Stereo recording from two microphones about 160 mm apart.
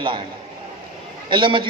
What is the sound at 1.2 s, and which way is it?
Speech, 30° right (ahead or behind).